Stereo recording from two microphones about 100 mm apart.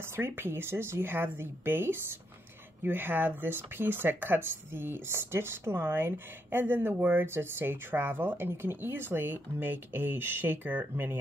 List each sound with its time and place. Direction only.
0.1 s speech: 25° right (ahead or behind)